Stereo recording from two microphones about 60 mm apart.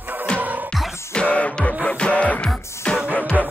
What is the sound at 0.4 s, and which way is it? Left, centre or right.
Music, right.